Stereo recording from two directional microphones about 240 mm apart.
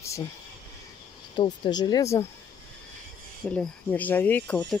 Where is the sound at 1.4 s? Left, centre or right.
Centre.